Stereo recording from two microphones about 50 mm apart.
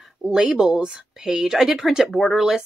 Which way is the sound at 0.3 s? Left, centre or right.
Centre.